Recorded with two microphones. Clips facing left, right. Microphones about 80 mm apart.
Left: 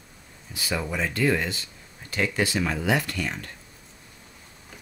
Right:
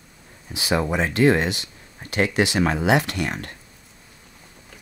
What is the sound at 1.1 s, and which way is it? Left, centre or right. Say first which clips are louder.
Speech: right 7 dB; right.